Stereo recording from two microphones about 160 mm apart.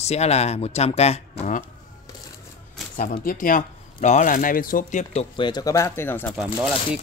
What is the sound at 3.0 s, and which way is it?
Speech, 55° left (ahead or behind).